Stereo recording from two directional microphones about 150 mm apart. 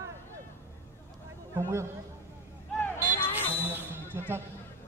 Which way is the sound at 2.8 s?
15° left (ahead or behind).